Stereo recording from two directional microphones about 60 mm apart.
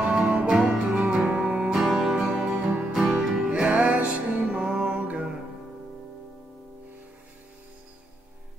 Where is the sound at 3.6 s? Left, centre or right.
Right.